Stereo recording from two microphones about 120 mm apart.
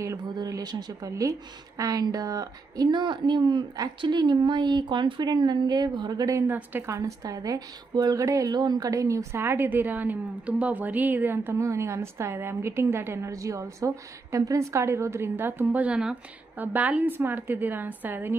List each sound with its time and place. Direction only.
0.2 s a woman's voice: 35° right (ahead or behind)
6.5 s a woman's voice: 15° right (ahead or behind)
7.0 s speech: 30° right (ahead or behind)